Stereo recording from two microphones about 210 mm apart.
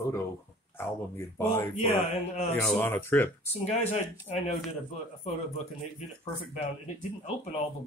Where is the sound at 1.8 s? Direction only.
30° left (ahead or behind).